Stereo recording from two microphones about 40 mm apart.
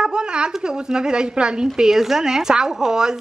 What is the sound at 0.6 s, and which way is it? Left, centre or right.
Speech, centre.